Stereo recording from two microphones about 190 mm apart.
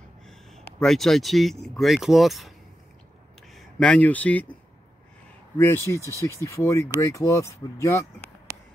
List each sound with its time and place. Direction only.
0.3 s speech: 5° left (ahead or behind)
3.5 s speech: 5° left (ahead or behind)
5.6 s speech: 10° left (ahead or behind)